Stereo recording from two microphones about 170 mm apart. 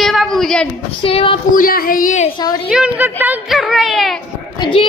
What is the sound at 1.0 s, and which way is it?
Speech, 35° left (ahead or behind).